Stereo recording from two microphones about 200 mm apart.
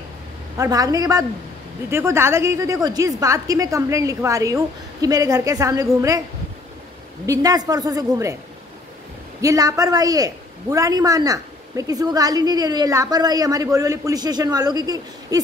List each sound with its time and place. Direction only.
0.6 s a man's voice: 20° right (ahead or behind)
7.2 s a man's voice: 20° right (ahead or behind)
9.4 s a man's voice: 15° right (ahead or behind)